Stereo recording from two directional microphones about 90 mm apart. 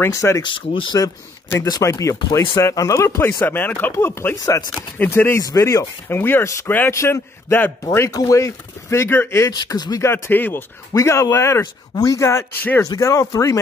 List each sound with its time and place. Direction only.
0.1 s speech: 35° left (ahead or behind)
0.4 s speech: 65° left (ahead or behind)
0.9 s speech: 40° left (ahead or behind)
3.4 s speech: 20° left (ahead or behind)
4.4 s speech: 40° left (ahead or behind)
4.7 s speech: 20° left (ahead or behind)
5.4 s speech: 35° left (ahead or behind)
8.1 s speech: 40° left (ahead or behind)
9.5 s speech: 45° left (ahead or behind)
10.0 s speech: 25° left (ahead or behind)
10.9 s speech: 35° left (ahead or behind)
11.6 s speech: 45° left (ahead or behind)